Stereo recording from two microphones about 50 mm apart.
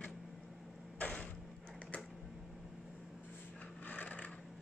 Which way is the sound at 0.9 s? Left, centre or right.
Left.